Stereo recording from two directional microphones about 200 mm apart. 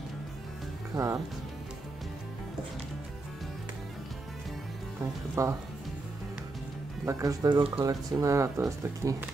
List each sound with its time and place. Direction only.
0.9 s speech: 15° right (ahead or behind)
5.3 s speech: 15° right (ahead or behind)
7.1 s speech: 15° right (ahead or behind)